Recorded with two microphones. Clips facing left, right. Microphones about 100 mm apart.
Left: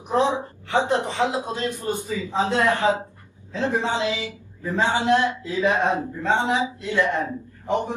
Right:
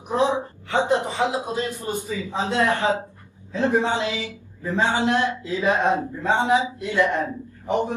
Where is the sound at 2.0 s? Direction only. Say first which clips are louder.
Even; 20° left (ahead or behind).